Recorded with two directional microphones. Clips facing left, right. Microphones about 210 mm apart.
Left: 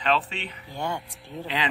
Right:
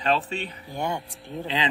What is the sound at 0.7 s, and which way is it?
Speech, 15° right (ahead or behind).